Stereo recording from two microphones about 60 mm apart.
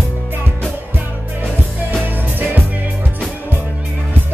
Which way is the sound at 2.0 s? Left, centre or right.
Right.